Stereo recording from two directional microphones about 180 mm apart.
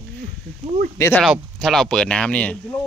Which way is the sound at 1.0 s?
15° left (ahead or behind).